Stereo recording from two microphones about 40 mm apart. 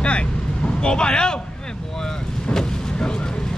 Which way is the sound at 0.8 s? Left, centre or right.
Left.